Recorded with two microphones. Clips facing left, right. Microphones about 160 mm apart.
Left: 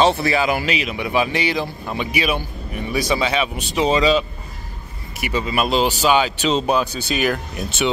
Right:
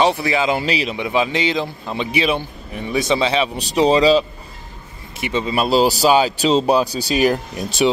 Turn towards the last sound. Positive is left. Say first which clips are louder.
# right 4 dB
turn(degrees=-35)  # may be behind; listen again after turning